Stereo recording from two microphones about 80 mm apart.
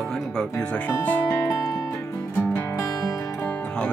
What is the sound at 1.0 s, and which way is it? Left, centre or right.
Speech, left.